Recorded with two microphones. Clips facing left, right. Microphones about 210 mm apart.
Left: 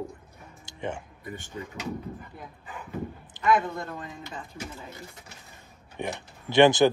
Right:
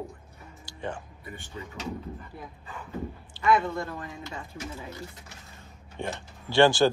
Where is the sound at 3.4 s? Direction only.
20° left (ahead or behind).